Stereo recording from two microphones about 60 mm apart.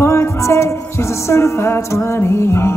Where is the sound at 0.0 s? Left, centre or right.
Left.